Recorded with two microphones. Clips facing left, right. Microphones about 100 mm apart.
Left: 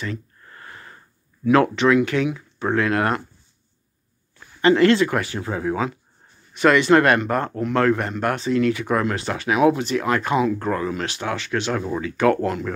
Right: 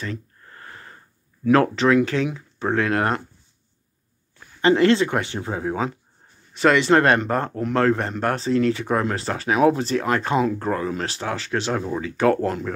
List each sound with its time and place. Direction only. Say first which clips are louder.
0.0 s a sound: left 1 dB; 35° right (ahead or behind)
1.4 s speech: left 1 dB; 40° right (ahead or behind)
4.6 s speech: left 1 dB; 25° right (ahead or behind)